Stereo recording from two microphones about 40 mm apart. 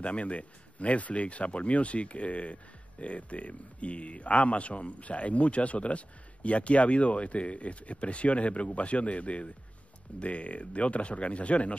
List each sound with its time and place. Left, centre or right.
0.0 s speech: left